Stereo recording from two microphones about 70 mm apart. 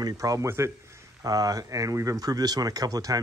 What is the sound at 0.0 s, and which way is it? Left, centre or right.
Speech, right.